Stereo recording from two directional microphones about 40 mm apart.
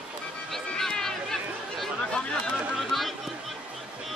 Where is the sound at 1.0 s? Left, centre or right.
Centre.